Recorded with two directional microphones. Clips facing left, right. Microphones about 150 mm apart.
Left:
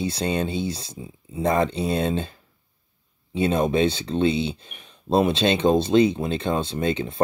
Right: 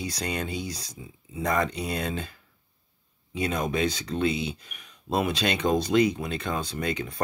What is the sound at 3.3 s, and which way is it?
Speech, 30° left (ahead or behind).